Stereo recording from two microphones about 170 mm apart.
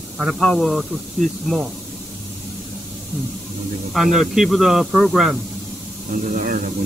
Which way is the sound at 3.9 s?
Centre (ahead or behind).